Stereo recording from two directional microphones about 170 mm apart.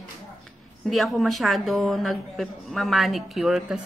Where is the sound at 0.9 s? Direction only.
Centre (ahead or behind).